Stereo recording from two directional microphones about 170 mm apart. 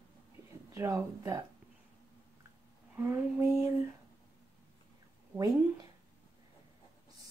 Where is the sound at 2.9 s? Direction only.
10° right (ahead or behind).